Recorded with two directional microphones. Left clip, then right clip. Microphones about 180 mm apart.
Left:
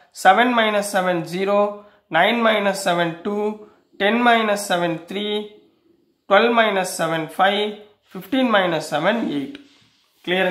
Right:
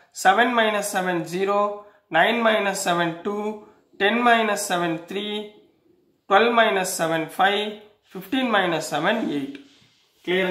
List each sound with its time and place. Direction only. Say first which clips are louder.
0.1 s speech: left 3 dB; 20° left (ahead or behind)